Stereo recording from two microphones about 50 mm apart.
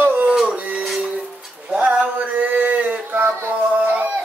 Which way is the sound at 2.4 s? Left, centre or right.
Right.